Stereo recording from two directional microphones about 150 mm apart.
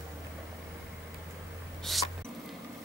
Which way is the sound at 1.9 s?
Centre (ahead or behind).